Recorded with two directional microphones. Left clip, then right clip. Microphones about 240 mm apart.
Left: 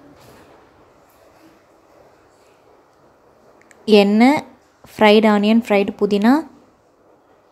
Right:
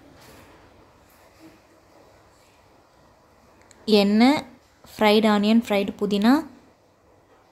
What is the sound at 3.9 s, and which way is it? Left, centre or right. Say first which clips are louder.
A woman's voice: left 6 dB; centre.